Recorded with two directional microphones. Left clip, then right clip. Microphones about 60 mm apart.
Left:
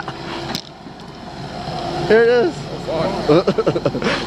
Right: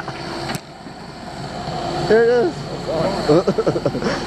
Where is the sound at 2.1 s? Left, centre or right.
Left.